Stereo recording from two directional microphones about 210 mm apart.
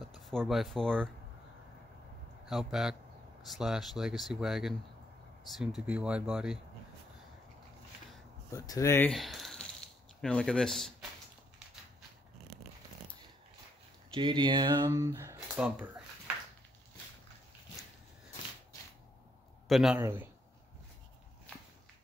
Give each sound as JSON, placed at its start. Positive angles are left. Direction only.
{"t": 0.1, "sound": "speech", "side_deg": 0}
{"t": 2.4, "sound": "speech", "side_deg": 0}
{"t": 5.8, "sound": "speech", "side_deg": -5}
{"t": 8.5, "sound": "speech", "side_deg": 15}
{"t": 9.1, "sound": "a sound", "side_deg": 0}
{"t": 10.2, "sound": "speech", "side_deg": 5}
{"t": 14.1, "sound": "speech", "side_deg": -25}
{"t": 19.7, "sound": "speech", "side_deg": 0}
{"t": 20.0, "sound": "speech", "side_deg": -10}